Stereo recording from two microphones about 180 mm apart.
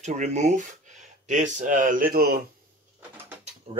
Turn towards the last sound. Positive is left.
turn(degrees=-35)  # may be behind; listen again after turning